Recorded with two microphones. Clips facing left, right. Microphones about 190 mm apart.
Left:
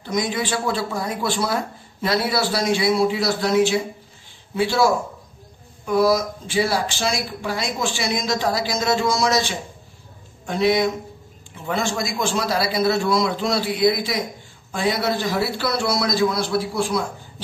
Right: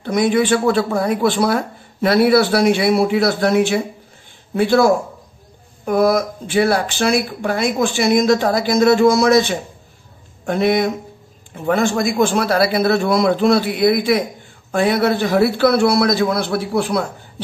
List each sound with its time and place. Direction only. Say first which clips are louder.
0.0 s speech: right 8 dB; 60° right (ahead or behind)